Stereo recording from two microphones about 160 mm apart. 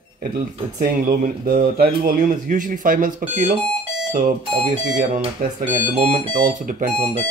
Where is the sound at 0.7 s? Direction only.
60° right (ahead or behind).